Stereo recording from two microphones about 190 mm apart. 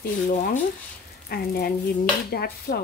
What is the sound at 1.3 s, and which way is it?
Speech, 55° left (ahead or behind).